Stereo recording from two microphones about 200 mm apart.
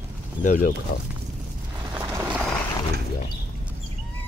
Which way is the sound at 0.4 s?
40° left (ahead or behind).